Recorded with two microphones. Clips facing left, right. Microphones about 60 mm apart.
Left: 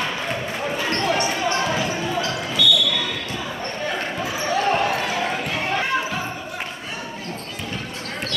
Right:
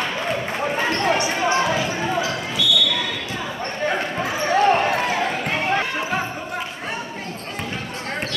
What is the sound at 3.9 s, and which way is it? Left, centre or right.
Basketball bounce, right.